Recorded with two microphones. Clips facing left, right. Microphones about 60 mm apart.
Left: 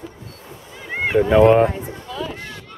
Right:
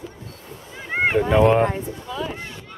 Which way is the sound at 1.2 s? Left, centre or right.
Centre.